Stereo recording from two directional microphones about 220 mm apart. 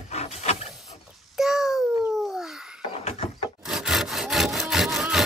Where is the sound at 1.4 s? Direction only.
Centre (ahead or behind).